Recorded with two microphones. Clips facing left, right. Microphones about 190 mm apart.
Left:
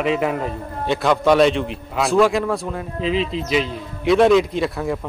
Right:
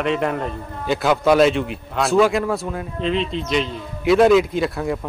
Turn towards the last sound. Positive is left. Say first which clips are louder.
# even
turn(degrees=0)  # may be behind; listen again after turning